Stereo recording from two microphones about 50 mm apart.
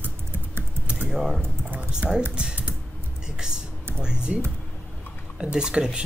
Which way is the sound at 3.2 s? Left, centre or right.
Centre.